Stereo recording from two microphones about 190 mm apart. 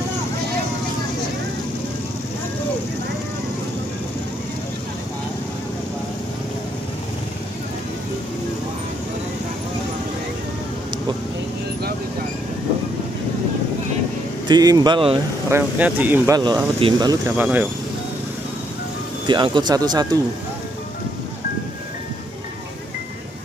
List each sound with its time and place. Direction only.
14.5 s speech: 20° right (ahead or behind)
15.5 s speech: 10° right (ahead or behind)
16.3 s speech: 20° right (ahead or behind)
17.4 s speech: 10° right (ahead or behind)
19.2 s speech: 25° right (ahead or behind)